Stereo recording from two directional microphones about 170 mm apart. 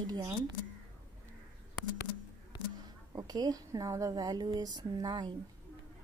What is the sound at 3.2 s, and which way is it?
Speech, 25° right (ahead or behind).